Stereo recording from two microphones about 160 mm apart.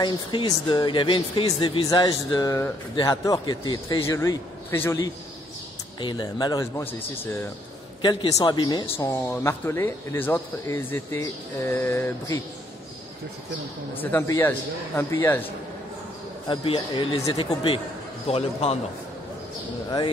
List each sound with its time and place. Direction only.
0.0 s speech: 30° left (ahead or behind)
5.9 s speech: 30° left (ahead or behind)
8.0 s speech: 30° left (ahead or behind)
13.9 s speech: 15° left (ahead or behind)
16.4 s speech: 35° left (ahead or behind)